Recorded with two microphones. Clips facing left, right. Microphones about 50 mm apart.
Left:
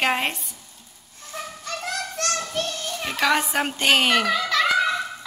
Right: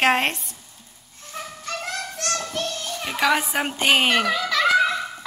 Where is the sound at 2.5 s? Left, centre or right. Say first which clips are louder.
Even; centre.